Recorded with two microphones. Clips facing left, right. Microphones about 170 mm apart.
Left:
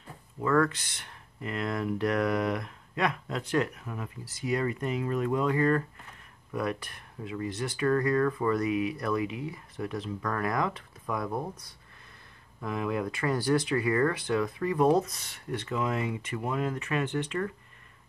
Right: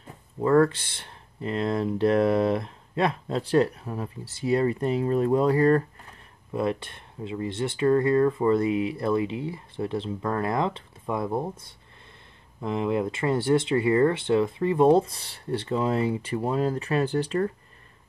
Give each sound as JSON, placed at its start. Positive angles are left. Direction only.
{"t": 0.4, "sound": "speech", "side_deg": -30}